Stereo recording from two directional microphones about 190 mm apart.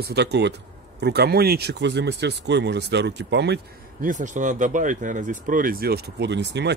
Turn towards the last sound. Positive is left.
turn(degrees=-65)  # may be behind; listen again after turning